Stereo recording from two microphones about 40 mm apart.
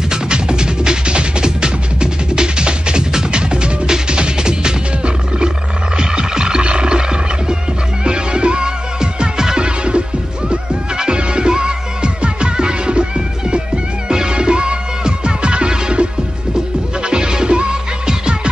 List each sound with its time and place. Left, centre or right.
0.1 s music: right